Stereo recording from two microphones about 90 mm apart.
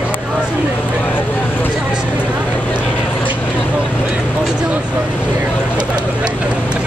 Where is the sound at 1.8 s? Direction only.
10° right (ahead or behind).